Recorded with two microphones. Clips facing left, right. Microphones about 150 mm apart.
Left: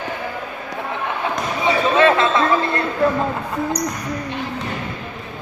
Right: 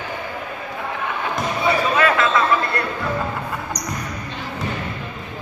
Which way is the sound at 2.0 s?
25° left (ahead or behind).